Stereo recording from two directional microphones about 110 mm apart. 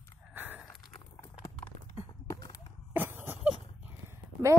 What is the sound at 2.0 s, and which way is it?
Clip-clop, 35° left (ahead or behind).